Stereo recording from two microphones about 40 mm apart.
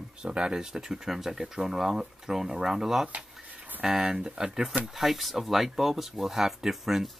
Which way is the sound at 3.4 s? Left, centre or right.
Right.